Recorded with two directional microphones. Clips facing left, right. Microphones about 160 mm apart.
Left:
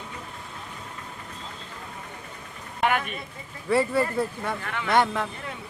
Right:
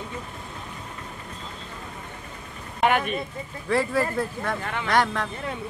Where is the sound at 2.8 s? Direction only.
25° right (ahead or behind).